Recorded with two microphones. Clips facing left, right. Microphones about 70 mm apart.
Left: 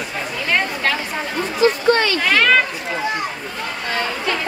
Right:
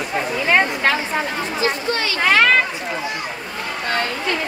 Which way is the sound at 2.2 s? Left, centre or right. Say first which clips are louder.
Right 2 dB; right.